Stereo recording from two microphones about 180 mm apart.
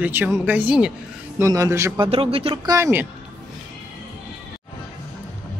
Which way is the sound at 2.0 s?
30° right (ahead or behind).